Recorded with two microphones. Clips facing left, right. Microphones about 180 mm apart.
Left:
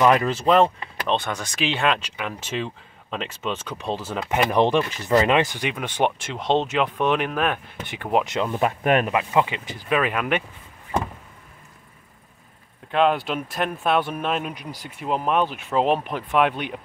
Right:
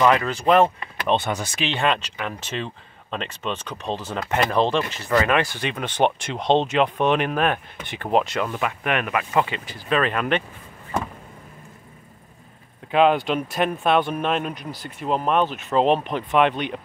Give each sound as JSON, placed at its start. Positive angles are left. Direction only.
{"t": 0.3, "sound": "speech", "side_deg": 0}
{"t": 8.3, "sound": "speech", "side_deg": 20}
{"t": 8.5, "sound": "speech", "side_deg": 40}
{"t": 9.1, "sound": "speech", "side_deg": 15}
{"t": 12.9, "sound": "speech", "side_deg": 0}